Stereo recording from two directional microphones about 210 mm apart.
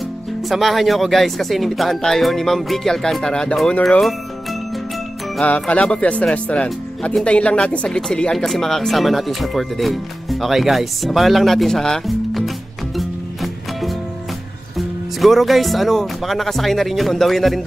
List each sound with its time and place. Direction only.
0.5 s speech: centre (ahead or behind)
5.4 s speech: 5° left (ahead or behind)
15.1 s speech: centre (ahead or behind)